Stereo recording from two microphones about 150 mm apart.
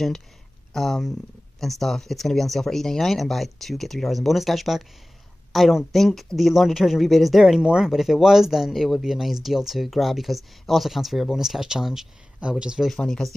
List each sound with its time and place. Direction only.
0.7 s a woman's voice: centre (ahead or behind)